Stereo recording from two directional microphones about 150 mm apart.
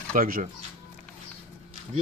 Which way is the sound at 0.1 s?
70° right (ahead or behind).